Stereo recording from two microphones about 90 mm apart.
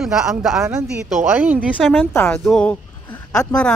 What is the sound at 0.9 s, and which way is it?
Speech, 10° right (ahead or behind).